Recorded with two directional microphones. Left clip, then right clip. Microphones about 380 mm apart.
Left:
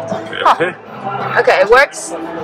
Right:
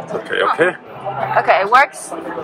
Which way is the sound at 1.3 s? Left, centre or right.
Centre.